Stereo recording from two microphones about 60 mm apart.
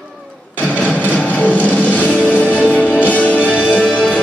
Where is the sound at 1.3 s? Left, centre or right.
Left.